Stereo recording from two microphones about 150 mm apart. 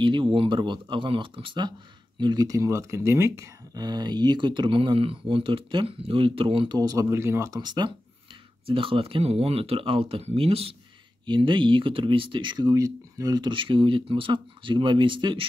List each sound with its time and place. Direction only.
0.0 s speech: 35° right (ahead or behind)